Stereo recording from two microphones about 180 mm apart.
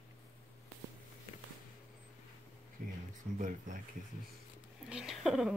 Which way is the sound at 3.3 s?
45° right (ahead or behind).